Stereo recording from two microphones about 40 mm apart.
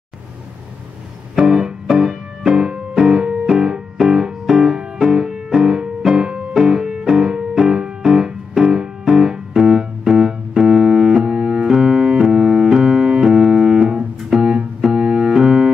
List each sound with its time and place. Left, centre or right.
1.4 s music: centre
6.6 s piano: centre
7.5 s music: centre
9.7 s piano: centre
13.7 s music: right
14.8 s piano: centre